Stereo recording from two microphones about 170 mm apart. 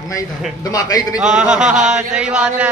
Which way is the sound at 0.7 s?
20° left (ahead or behind).